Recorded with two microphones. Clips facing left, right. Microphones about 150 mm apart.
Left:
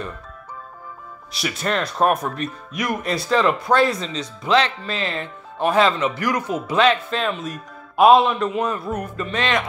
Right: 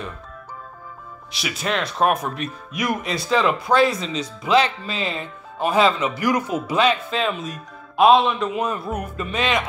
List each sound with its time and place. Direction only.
1.3 s speech: centre (ahead or behind)
8.6 s speech: 15° right (ahead or behind)